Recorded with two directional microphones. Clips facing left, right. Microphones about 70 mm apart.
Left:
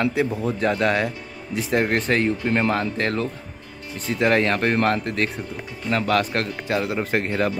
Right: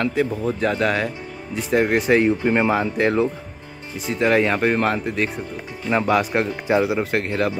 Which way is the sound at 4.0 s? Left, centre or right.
Centre.